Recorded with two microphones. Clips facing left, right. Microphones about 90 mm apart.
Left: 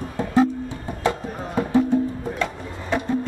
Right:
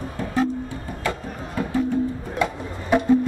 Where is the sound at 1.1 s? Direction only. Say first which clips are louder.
Left 5 dB; 25° left (ahead or behind).